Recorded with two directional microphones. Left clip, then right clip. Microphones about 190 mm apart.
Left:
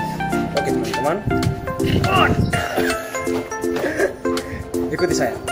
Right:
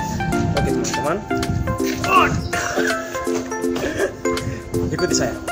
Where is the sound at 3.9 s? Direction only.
Centre (ahead or behind).